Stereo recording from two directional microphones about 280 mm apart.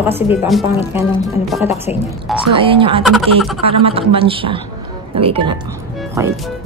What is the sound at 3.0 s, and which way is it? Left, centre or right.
Speech, centre.